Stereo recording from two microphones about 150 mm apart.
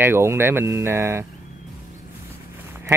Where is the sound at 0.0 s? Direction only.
15° right (ahead or behind).